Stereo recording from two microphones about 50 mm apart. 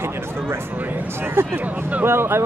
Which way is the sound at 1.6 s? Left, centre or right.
Right.